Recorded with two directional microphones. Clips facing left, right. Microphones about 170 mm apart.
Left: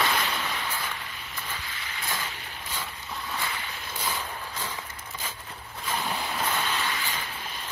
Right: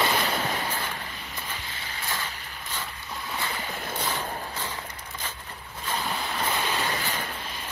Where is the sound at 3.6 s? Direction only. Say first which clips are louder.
Right 3 dB; 50° right (ahead or behind).